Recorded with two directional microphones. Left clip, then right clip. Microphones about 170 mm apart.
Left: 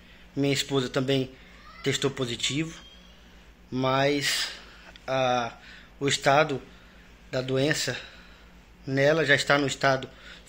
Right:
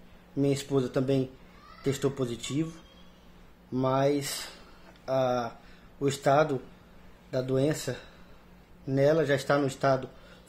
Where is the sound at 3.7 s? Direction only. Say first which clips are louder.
Left 2 dB; 10° right (ahead or behind).